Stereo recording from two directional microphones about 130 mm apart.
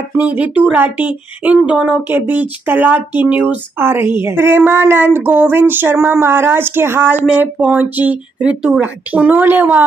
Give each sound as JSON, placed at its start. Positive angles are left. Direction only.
{"t": 0.2, "sound": "speech", "side_deg": -10}